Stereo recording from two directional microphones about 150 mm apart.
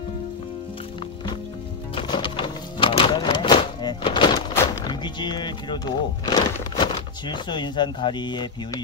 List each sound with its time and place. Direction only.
2.0 s music: 30° left (ahead or behind)
6.3 s speech: 30° left (ahead or behind)